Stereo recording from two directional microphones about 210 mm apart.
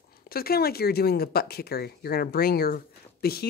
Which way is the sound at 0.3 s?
45° left (ahead or behind).